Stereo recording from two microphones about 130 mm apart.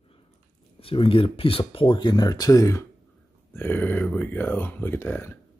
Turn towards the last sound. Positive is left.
turn(degrees=15)  # may be behind; listen again after turning